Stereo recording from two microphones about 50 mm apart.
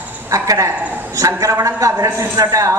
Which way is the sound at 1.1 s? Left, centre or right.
Right.